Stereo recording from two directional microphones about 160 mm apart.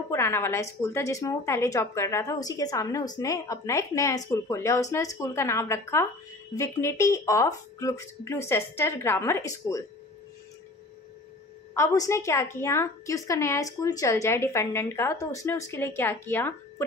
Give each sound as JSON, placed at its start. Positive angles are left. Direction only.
{"t": 0.1, "sound": "a woman's voice", "side_deg": 15}
{"t": 11.7, "sound": "a woman's voice", "side_deg": 20}